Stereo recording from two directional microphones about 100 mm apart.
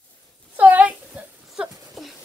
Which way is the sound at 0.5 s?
15° right (ahead or behind).